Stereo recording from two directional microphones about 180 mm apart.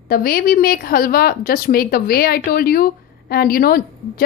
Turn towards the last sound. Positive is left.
turn(degrees=55)  # may be behind; listen again after turning